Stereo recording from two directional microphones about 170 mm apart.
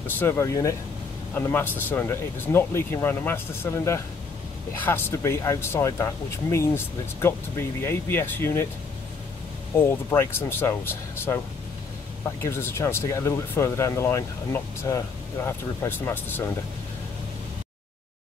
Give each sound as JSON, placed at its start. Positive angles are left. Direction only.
{"t": 0.0, "sound": "speech", "side_deg": 15}
{"t": 9.8, "sound": "speech", "side_deg": 15}
{"t": 12.4, "sound": "speech", "side_deg": 15}